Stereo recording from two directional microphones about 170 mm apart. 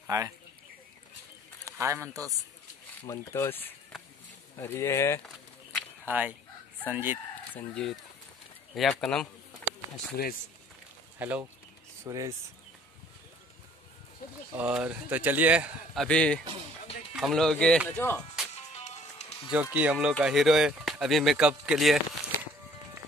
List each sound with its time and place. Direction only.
0.0 s a sound: 20° right (ahead or behind)
1.7 s a man's voice: 15° right (ahead or behind)
3.1 s speech: 15° left (ahead or behind)
6.0 s fowl: 10° right (ahead or behind)
6.8 s chicken: 10° right (ahead or behind)
7.5 s speech: 5° left (ahead or behind)
10.2 s speech: 65° left (ahead or behind)
11.1 s speech: 10° right (ahead or behind)
14.2 s a sound: 55° left (ahead or behind)
14.6 s a man's voice: 5° right (ahead or behind); by 18.2 s 10° left (ahead or behind)
18.5 s music: 40° left (ahead or behind)
19.5 s speech: 10° right (ahead or behind)